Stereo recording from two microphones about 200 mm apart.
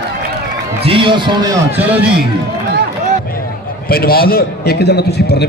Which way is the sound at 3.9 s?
50° left (ahead or behind).